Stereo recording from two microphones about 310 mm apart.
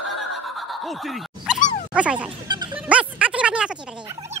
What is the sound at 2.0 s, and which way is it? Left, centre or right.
Speech, centre.